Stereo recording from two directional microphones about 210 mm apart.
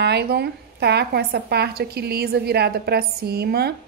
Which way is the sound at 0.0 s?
50° right (ahead or behind).